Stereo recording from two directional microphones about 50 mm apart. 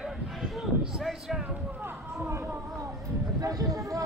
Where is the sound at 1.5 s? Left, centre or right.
Right.